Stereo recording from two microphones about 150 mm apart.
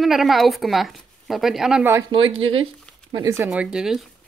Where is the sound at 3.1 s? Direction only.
20° right (ahead or behind).